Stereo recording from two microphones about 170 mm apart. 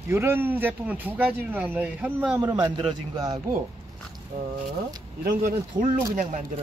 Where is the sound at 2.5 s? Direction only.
25° right (ahead or behind).